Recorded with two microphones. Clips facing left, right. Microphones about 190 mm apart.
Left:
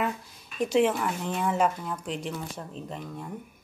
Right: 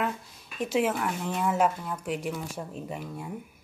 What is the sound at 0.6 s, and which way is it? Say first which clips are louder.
Speech: left 3 dB; 5° right (ahead or behind).